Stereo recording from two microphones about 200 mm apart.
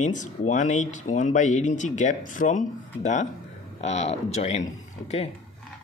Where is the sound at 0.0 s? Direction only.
40° left (ahead or behind).